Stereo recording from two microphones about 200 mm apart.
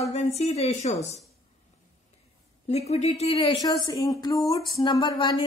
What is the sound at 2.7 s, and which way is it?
Speech, 30° left (ahead or behind).